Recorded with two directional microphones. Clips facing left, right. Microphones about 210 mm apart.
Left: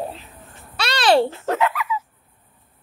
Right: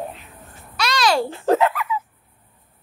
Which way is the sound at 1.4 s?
35° right (ahead or behind).